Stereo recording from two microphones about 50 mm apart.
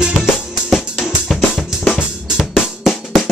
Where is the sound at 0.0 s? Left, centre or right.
Centre.